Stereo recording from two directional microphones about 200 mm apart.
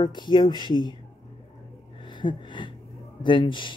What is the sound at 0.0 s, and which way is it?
Speech, 20° left (ahead or behind).